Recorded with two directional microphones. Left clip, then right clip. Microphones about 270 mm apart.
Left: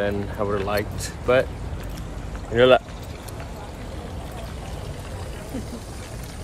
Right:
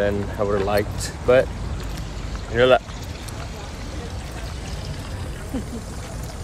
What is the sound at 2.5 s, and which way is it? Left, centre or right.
Speech, left.